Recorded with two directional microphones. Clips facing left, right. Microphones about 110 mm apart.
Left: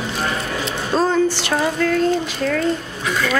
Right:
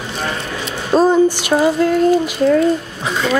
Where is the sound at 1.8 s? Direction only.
20° right (ahead or behind).